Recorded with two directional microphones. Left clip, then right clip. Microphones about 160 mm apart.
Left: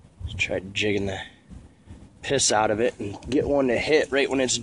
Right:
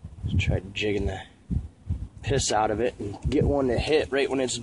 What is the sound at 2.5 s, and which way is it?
Speech, 40° left (ahead or behind).